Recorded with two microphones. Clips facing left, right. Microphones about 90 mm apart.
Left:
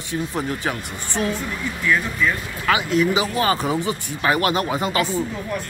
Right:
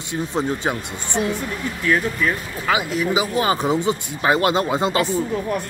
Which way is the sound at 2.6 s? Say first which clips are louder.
Left 2 dB; 5° right (ahead or behind).